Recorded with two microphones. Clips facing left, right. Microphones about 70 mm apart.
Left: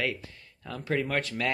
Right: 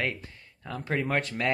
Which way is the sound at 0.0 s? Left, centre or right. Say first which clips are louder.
Even; right.